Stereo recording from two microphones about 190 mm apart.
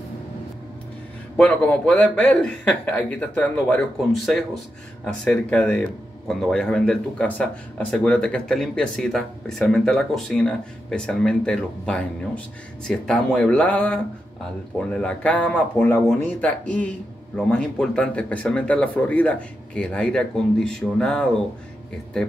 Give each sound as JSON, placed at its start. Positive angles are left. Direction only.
{"t": 1.3, "sound": "a man's voice", "side_deg": 5}
{"t": 5.0, "sound": "a man's voice", "side_deg": 5}